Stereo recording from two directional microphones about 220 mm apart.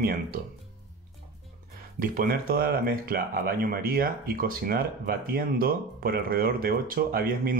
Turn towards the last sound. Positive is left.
turn(degrees=-45)  # may be behind; listen again after turning